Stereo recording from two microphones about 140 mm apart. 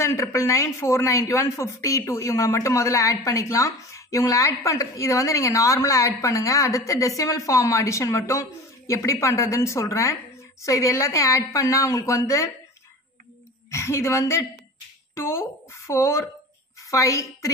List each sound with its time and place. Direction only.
0.0 s a woman's voice: 20° left (ahead or behind)
13.7 s a woman's voice: 20° left (ahead or behind)